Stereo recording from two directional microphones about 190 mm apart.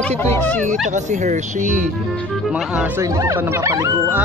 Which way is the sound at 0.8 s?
40° right (ahead or behind).